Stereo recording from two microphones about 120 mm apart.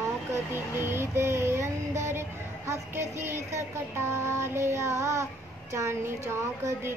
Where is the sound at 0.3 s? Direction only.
20° right (ahead or behind).